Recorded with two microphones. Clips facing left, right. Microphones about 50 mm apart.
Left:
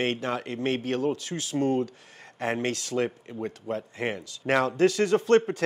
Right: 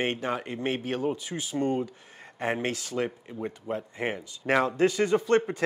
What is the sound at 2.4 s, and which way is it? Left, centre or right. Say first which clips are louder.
Speech: even; right.